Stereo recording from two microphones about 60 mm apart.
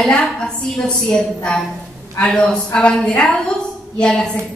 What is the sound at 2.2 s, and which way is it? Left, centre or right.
A woman's voice, centre.